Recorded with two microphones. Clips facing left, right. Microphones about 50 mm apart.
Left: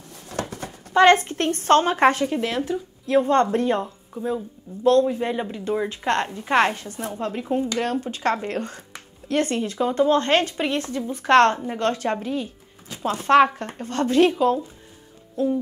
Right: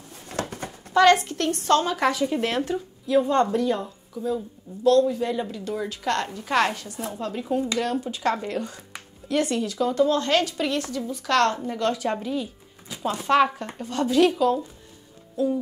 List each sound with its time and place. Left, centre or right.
0.3 s a sound: right
0.9 s speech: left
2.4 s speech: centre
3.1 s speech: left
7.4 s speech: left
7.7 s speech: left